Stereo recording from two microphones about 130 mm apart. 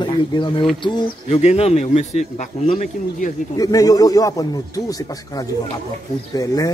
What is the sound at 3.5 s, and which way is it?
Speech, 25° left (ahead or behind).